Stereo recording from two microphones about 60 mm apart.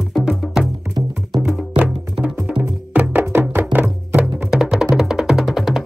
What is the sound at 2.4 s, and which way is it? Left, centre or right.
Music, right.